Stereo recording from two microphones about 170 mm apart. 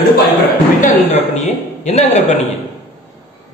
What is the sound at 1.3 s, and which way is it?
Speech, 40° left (ahead or behind).